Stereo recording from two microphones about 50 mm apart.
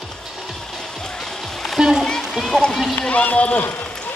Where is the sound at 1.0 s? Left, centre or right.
Centre.